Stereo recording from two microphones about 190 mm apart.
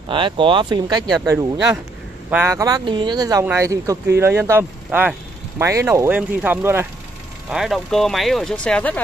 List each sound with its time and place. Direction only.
0.1 s speech: 25° right (ahead or behind); by 9.0 s 5° left (ahead or behind)